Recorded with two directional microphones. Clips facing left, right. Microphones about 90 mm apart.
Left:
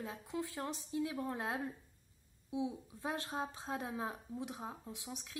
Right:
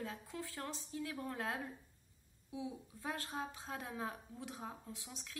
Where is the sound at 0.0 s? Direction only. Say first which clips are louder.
Left 4 dB; 20° left (ahead or behind).